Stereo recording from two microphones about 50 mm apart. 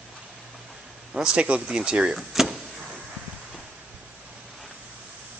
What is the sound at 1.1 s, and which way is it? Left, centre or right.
Speech, centre.